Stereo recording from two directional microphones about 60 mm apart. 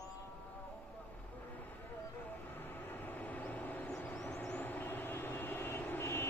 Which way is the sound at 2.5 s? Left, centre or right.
Left.